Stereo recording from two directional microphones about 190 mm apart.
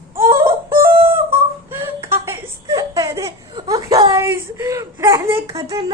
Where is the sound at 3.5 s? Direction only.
20° right (ahead or behind).